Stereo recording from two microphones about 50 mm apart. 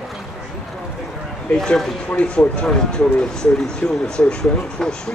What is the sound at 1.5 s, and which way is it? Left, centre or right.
Speech, centre.